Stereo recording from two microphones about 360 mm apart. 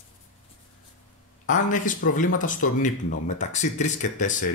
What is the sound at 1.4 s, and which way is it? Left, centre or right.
Speech, left.